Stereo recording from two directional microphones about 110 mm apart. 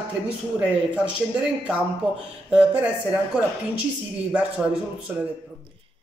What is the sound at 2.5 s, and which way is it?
Speech, 10° right (ahead or behind).